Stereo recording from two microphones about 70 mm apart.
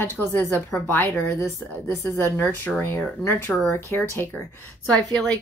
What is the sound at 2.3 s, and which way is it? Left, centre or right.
Speech, left.